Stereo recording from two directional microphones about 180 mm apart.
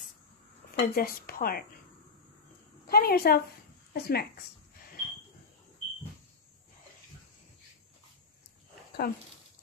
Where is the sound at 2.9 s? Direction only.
60° left (ahead or behind).